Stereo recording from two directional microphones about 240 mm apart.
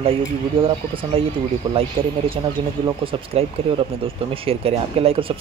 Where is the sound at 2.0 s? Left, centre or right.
Right.